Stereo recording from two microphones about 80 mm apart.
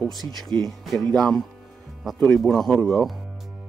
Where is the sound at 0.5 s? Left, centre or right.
Right.